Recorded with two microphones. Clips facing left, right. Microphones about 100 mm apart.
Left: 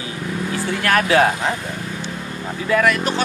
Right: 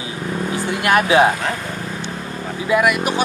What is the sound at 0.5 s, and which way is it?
Music, 15° right (ahead or behind).